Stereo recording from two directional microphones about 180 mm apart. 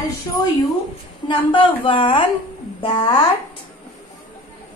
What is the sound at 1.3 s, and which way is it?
A woman's voice, 25° left (ahead or behind).